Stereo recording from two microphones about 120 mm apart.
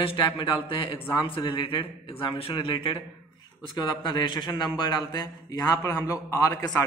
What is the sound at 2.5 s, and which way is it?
A man's voice, 40° left (ahead or behind).